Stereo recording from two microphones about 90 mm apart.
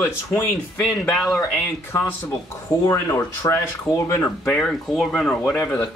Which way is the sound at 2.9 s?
35° left (ahead or behind).